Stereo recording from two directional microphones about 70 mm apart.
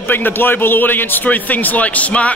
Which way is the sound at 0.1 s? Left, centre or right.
Left.